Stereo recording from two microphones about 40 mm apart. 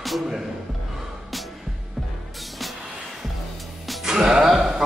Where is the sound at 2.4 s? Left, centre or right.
Centre.